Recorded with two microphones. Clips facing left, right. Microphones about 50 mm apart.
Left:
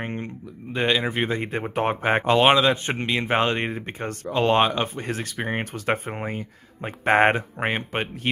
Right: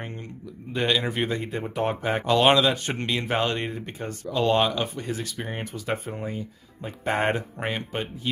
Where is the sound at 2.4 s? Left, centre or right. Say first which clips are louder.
Right 1 dB; left.